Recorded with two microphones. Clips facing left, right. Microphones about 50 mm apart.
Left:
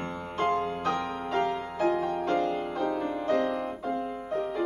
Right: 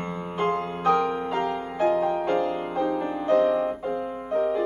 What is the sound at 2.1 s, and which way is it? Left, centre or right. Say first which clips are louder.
Music: right 3 dB; right.